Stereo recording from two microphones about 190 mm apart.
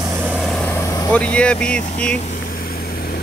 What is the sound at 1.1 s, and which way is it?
Speech, 5° left (ahead or behind).